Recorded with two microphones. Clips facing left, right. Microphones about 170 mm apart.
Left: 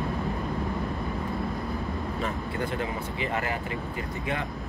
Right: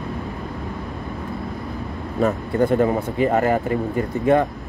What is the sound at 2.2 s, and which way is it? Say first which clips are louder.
Speech: right 15 dB; 45° right (ahead or behind).